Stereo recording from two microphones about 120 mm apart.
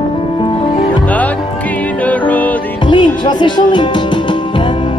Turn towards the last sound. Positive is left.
turn(degrees=45)  # may be behind; listen again after turning